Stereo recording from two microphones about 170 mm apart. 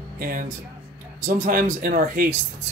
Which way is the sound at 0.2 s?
55° right (ahead or behind).